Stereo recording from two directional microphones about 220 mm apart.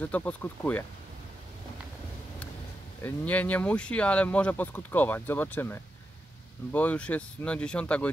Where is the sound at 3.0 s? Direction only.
10° left (ahead or behind).